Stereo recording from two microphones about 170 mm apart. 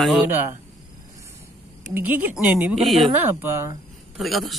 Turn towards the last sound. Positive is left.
turn(degrees=0)  # may be behind; listen again after turning